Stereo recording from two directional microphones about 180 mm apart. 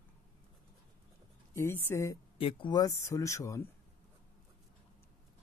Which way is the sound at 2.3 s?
30° left (ahead or behind).